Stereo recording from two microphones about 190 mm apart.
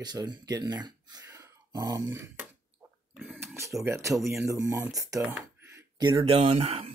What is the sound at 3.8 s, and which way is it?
Speech, 15° right (ahead or behind).